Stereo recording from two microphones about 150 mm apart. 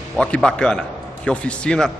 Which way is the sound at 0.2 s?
5° left (ahead or behind).